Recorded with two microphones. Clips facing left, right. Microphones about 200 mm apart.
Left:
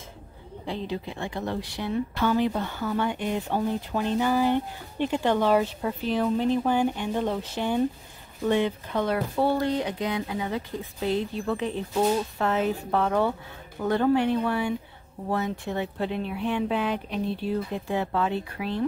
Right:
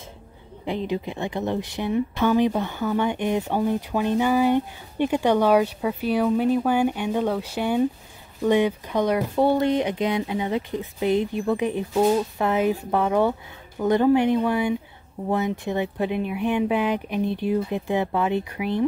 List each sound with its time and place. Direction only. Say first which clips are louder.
0.7 s speech: right 5 dB; 15° right (ahead or behind)